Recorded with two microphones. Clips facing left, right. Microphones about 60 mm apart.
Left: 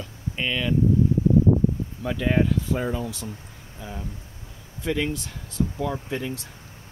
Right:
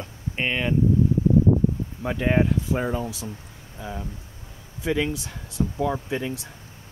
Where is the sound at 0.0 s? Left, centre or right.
Right.